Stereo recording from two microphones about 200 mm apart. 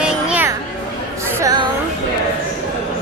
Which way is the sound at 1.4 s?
20° right (ahead or behind).